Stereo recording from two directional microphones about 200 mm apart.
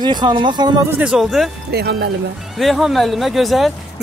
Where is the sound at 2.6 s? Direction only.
Centre (ahead or behind).